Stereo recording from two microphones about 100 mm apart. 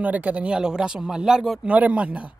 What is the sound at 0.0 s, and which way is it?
Speech, 15° right (ahead or behind).